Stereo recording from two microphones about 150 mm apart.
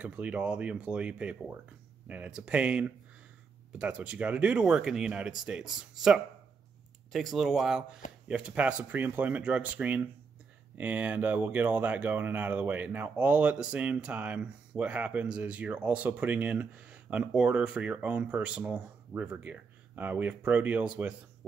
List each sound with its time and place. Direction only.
0.0 s speech: 10° right (ahead or behind)